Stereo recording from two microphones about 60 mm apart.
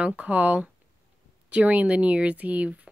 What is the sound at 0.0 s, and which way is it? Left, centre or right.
Speech, right.